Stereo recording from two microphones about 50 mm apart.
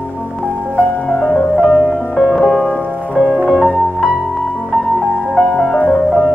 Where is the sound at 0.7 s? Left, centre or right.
Left.